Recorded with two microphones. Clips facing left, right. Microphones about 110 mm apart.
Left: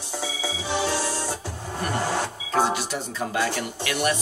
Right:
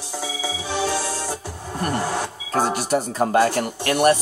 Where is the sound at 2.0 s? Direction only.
10° right (ahead or behind).